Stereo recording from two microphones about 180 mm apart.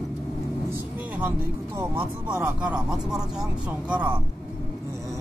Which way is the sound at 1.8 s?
10° right (ahead or behind).